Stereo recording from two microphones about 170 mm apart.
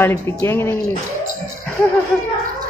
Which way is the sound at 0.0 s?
15° left (ahead or behind).